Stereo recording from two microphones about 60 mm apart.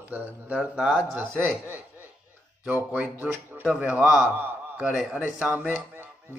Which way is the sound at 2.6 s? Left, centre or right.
Centre.